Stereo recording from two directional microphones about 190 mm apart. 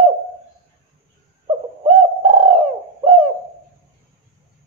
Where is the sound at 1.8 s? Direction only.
30° right (ahead or behind).